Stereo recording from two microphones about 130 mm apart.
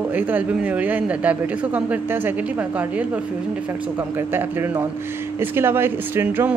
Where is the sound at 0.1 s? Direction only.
10° right (ahead or behind).